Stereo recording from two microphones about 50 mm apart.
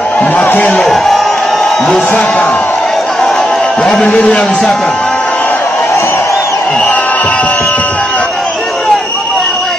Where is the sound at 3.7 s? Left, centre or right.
Centre.